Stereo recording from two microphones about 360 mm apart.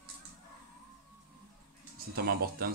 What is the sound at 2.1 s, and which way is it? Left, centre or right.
Speech, right.